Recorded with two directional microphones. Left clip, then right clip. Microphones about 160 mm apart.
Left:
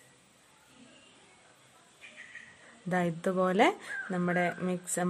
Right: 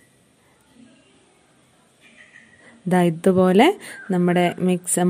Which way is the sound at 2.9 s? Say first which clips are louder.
Right 12 dB; 40° right (ahead or behind).